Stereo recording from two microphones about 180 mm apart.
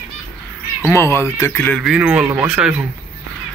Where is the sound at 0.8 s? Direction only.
15° left (ahead or behind).